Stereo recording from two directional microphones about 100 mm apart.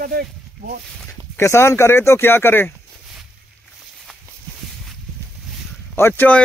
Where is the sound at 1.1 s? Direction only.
25° left (ahead or behind).